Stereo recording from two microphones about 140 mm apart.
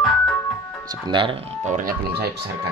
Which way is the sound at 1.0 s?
35° right (ahead or behind).